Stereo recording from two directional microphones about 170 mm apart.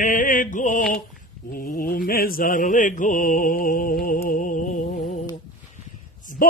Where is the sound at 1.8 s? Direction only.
60° left (ahead or behind).